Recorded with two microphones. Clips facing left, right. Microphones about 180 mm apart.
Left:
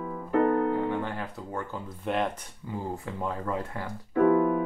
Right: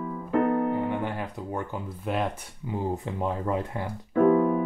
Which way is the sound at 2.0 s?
5° right (ahead or behind).